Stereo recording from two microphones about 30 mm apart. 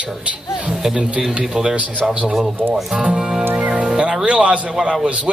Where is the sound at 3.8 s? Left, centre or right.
Right.